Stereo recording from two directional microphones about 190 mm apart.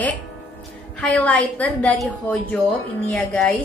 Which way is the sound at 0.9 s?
5° left (ahead or behind).